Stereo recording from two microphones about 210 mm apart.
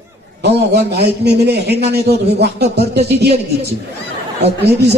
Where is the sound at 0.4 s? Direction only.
50° right (ahead or behind).